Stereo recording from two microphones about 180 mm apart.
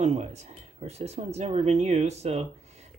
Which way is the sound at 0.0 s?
40° right (ahead or behind).